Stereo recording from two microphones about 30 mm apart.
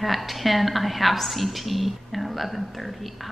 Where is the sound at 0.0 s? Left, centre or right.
Centre.